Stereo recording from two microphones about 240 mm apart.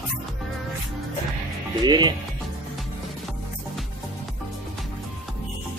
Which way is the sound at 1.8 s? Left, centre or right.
Centre.